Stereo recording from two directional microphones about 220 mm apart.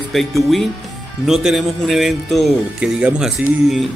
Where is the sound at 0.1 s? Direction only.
Centre (ahead or behind).